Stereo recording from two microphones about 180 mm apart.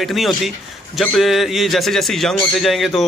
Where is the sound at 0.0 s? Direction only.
Centre (ahead or behind).